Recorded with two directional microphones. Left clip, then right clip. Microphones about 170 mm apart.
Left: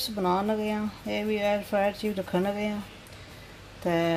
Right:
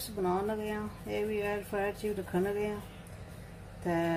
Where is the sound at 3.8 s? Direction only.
45° left (ahead or behind).